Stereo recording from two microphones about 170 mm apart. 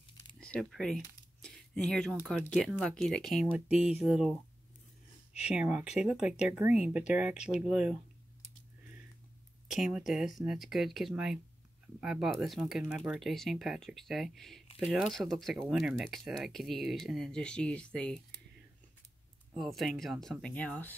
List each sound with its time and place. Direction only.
0.4 s speech: 5° left (ahead or behind)
1.4 s a sound: 5° left (ahead or behind)
2.8 s speech: centre (ahead or behind)
5.5 s speech: 5° right (ahead or behind)
9.7 s speech: 5° right (ahead or behind)
19.5 s speech: centre (ahead or behind)